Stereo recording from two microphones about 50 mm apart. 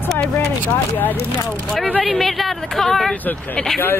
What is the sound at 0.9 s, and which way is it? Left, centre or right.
Speech, left.